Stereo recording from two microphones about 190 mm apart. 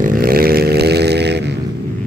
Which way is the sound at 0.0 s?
50° right (ahead or behind).